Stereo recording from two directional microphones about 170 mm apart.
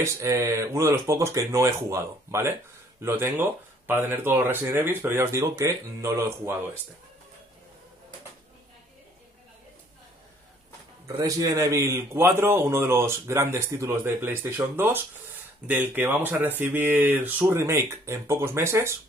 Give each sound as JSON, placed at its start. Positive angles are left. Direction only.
{"t": 0.0, "sound": "speech", "side_deg": -15}
{"t": 11.1, "sound": "speech", "side_deg": -20}